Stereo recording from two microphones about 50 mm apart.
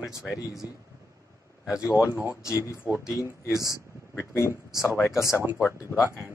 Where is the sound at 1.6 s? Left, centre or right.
Left.